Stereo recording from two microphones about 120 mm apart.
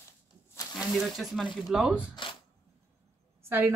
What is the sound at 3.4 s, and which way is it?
Speech, 15° right (ahead or behind).